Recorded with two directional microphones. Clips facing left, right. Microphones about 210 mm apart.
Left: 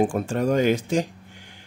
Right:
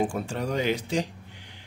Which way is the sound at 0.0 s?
50° left (ahead or behind).